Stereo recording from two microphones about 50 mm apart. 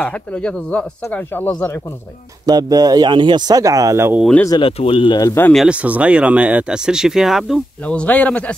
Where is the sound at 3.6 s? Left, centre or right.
Right.